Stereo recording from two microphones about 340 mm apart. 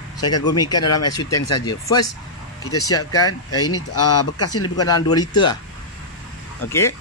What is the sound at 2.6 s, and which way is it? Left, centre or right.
Speech, left.